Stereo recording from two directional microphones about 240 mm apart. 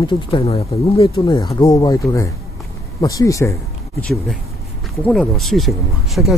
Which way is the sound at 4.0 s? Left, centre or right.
Centre.